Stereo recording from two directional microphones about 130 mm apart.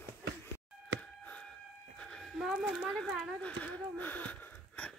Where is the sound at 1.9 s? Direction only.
5° left (ahead or behind).